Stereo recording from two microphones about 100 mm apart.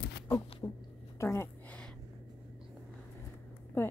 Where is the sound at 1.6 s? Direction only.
15° left (ahead or behind).